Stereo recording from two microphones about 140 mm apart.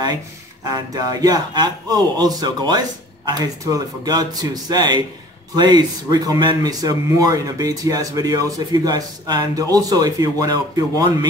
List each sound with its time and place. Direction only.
0.7 s speech: 25° right (ahead or behind)